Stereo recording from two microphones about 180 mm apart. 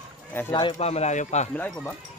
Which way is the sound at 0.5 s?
30° left (ahead or behind).